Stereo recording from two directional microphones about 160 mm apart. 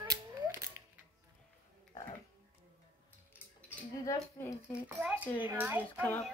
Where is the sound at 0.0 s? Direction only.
20° right (ahead or behind).